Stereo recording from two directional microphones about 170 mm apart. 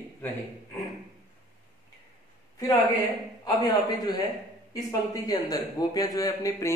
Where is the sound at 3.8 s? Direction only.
20° left (ahead or behind).